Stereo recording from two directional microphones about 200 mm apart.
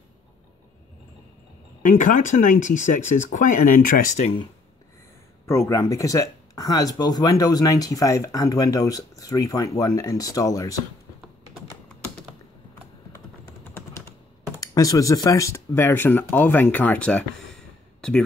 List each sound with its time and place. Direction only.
1.8 s speech: 40° left (ahead or behind)
5.5 s speech: 15° left (ahead or behind)
14.6 s speech: 15° left (ahead or behind)